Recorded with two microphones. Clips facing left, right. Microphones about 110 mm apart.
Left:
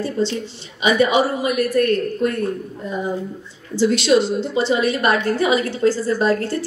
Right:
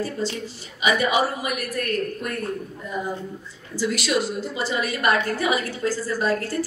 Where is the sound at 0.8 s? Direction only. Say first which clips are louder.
Left 5 dB; 25° left (ahead or behind).